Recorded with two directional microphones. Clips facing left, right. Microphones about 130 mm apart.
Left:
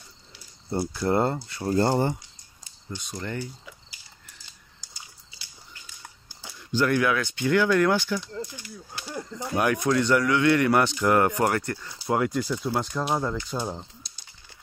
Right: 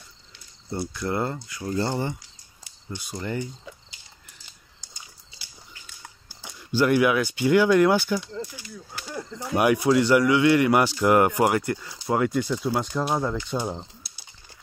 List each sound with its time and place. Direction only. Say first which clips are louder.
0.7 s speech: left 3 dB; 30° left (ahead or behind)
1.8 s speech: left 4 dB; 45° left (ahead or behind)
2.9 s speech: right 2 dB; 10° right (ahead or behind)
3.6 s a sound: right 4 dB; 20° right (ahead or behind)
6.4 s speech: right 2 dB; 10° right (ahead or behind)
8.2 s speech: right 1 dB; centre (ahead or behind)
9.6 s speech: right 4 dB; 10° right (ahead or behind)
12.0 s speech: right 1 dB; centre (ahead or behind)
13.7 s typing: right 2 dB; 10° right (ahead or behind)